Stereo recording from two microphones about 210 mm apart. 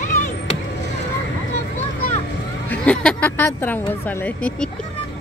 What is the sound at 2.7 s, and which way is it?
Speech, 5° left (ahead or behind).